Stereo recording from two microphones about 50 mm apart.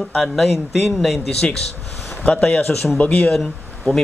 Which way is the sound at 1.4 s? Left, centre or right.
Centre.